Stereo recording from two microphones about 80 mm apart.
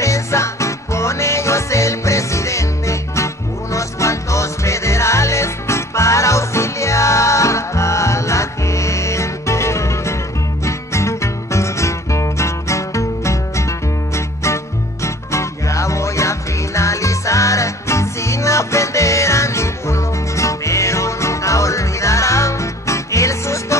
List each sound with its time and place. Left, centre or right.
0.0 s music: left